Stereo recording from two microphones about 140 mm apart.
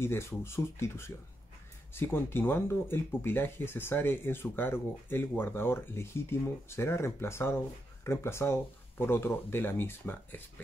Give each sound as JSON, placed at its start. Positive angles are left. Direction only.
{"t": 0.0, "sound": "speech", "side_deg": 20}